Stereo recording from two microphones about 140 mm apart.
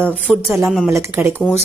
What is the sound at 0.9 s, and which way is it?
Speech, 15° right (ahead or behind).